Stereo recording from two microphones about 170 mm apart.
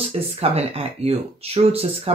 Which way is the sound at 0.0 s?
35° right (ahead or behind).